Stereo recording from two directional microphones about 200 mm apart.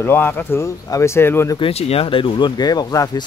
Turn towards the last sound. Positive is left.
turn(degrees=20)  # may be behind; listen again after turning